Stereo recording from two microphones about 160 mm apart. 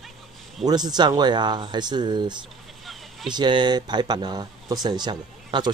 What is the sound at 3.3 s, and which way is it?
A man's voice, 30° right (ahead or behind).